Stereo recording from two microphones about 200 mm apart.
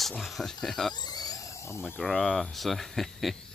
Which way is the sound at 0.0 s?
Centre (ahead or behind).